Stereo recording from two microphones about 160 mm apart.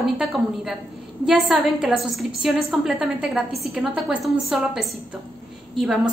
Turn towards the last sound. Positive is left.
turn(degrees=0)  # may be behind; listen again after turning